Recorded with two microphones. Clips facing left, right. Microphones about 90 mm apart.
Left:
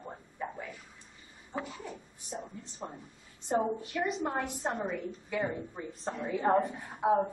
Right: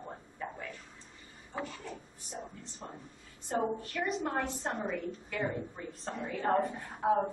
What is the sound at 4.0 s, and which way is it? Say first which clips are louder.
A woman's voice: left 1 dB; centre (ahead or behind).